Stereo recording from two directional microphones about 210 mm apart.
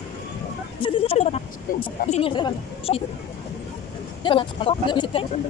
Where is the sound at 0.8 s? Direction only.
25° left (ahead or behind).